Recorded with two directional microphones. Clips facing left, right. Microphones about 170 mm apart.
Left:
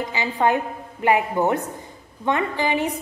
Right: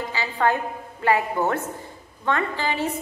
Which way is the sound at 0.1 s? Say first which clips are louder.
Left 2 dB; 20° left (ahead or behind).